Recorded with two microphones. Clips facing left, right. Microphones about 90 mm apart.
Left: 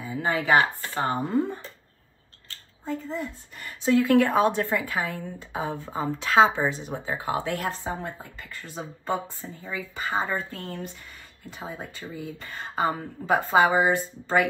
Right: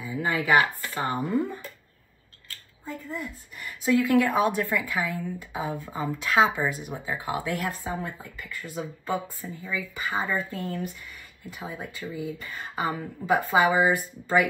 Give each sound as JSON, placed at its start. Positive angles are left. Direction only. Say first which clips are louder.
{"t": 0.0, "sound": "a woman's voice", "louder": "left 1 dB", "side_deg": 30}